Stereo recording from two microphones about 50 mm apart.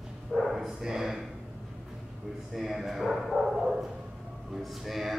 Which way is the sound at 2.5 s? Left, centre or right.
Centre.